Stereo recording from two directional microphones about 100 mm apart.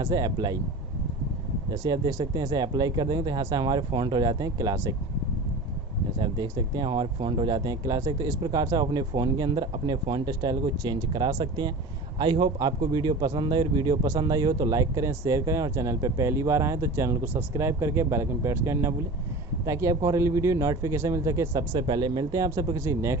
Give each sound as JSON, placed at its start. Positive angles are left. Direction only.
{"t": 0.0, "sound": "speech", "side_deg": -40}
{"t": 1.7, "sound": "speech", "side_deg": -40}
{"t": 6.1, "sound": "speech", "side_deg": -45}
{"t": 17.2, "sound": "speech", "side_deg": -20}
{"t": 21.7, "sound": "speech", "side_deg": -50}